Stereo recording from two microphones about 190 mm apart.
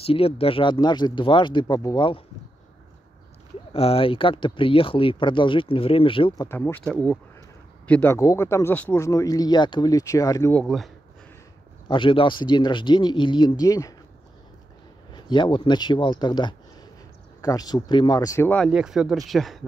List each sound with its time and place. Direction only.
0.0 s speech: 30° left (ahead or behind)
3.7 s speech: 30° left (ahead or behind)
10.5 s speech: 5° left (ahead or behind)
11.9 s speech: 25° left (ahead or behind)
15.1 s speech: 25° left (ahead or behind)
18.7 s speech: 5° right (ahead or behind)